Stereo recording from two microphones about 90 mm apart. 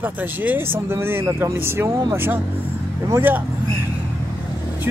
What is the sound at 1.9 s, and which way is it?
Speech, 45° right (ahead or behind).